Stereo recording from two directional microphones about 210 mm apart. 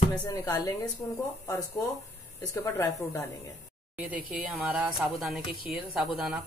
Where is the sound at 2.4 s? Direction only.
15° left (ahead or behind).